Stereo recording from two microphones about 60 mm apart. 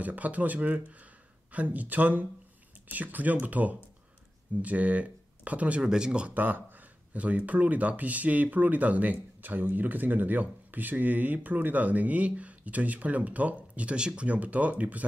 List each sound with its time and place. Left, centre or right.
0.0 s speech: right
6.3 s speech: right